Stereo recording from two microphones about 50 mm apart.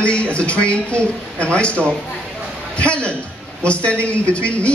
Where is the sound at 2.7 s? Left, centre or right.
Left.